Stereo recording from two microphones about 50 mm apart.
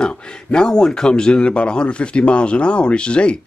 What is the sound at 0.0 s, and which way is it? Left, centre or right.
A man's voice, centre.